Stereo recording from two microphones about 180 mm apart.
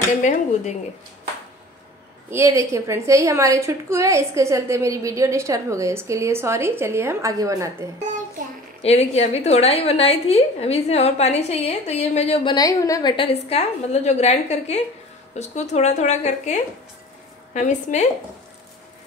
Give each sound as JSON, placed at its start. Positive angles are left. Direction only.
{"t": 0.2, "sound": "speech", "side_deg": 40}
{"t": 2.3, "sound": "a woman's voice", "side_deg": -15}
{"t": 8.8, "sound": "a woman's voice", "side_deg": 35}
{"t": 12.5, "sound": "a woman's voice", "side_deg": 20}